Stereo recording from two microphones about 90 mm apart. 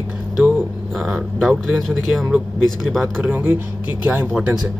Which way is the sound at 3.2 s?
20° right (ahead or behind).